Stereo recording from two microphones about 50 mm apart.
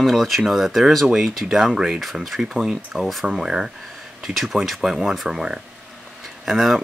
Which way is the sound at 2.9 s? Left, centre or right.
Centre.